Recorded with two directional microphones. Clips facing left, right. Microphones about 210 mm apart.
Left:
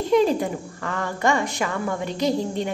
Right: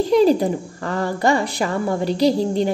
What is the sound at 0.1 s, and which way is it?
A woman's voice, 35° right (ahead or behind).